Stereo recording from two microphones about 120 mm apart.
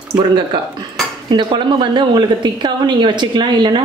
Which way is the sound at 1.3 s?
40° right (ahead or behind).